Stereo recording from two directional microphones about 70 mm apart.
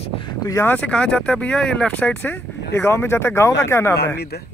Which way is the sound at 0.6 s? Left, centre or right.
Left.